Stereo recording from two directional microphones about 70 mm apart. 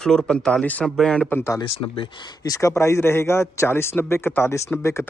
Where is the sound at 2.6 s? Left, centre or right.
Left.